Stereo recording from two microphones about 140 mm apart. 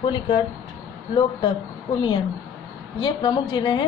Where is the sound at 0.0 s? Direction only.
30° left (ahead or behind).